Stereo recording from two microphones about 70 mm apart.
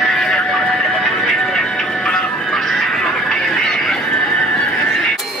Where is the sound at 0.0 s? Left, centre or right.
Centre.